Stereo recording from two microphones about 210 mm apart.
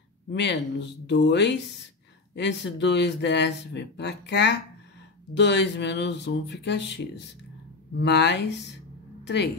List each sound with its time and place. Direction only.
0.3 s speech: 55° left (ahead or behind)